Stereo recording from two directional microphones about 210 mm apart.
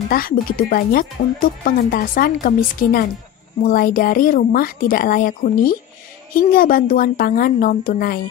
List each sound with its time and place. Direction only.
0.1 s speech: 45° left (ahead or behind)